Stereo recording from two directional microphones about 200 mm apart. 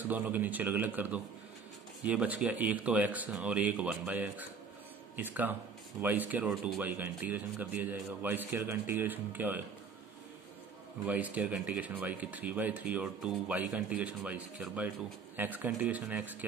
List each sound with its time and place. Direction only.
0.1 s speech: 10° right (ahead or behind)
11.1 s speech: 10° right (ahead or behind)